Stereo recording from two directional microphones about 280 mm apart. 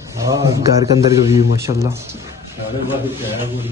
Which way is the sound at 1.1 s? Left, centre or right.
Centre.